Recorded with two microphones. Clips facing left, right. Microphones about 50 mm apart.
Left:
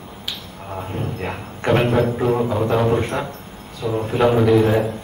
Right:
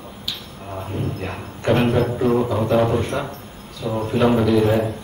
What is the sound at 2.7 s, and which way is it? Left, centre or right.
Speech, centre.